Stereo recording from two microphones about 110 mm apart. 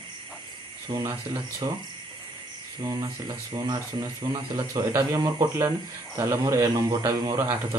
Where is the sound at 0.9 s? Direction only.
55° right (ahead or behind).